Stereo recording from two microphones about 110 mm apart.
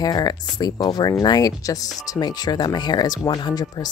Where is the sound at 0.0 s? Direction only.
35° left (ahead or behind).